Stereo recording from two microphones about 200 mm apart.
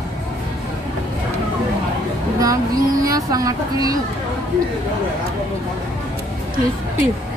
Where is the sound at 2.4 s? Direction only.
15° right (ahead or behind).